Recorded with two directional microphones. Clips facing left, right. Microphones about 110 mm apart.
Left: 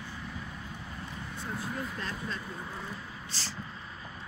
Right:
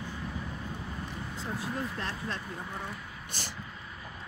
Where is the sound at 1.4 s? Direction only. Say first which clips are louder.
Right 1 dB; 85° right.